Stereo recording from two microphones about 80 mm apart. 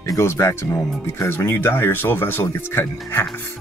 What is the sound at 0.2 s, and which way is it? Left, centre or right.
Speech, left.